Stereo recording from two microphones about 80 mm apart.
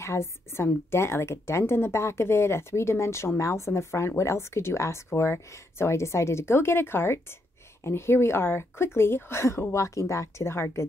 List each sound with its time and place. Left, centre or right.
0.0 s speech: left